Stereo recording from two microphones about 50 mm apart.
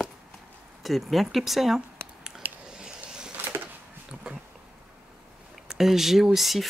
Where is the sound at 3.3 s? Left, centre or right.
Right.